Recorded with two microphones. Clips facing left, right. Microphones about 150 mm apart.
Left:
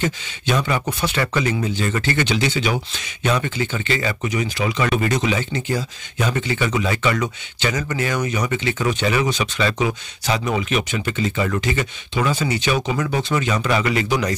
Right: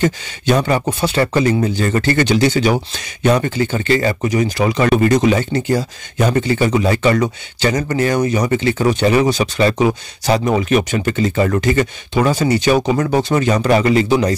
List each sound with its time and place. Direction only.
0.0 s speech: 45° right (ahead or behind)
0.8 s speech: 30° right (ahead or behind)